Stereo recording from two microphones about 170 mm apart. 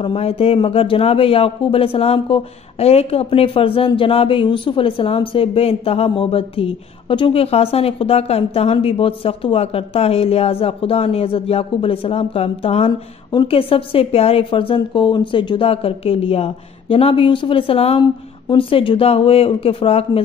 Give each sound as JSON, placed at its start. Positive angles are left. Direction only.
{"t": 0.0, "sound": "speech", "side_deg": 35}